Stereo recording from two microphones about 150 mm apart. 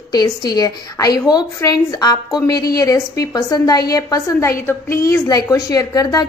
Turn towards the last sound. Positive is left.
turn(degrees=25)  # may be behind; listen again after turning